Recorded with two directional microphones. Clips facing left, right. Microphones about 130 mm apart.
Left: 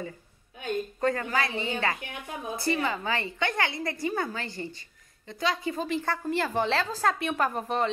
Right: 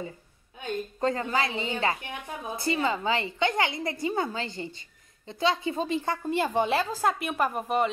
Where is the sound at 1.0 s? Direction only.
25° right (ahead or behind).